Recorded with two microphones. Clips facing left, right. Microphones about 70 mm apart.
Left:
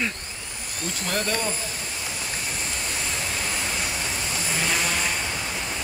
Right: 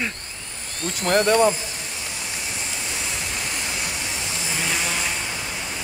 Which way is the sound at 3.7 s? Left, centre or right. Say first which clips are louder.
Even; centre.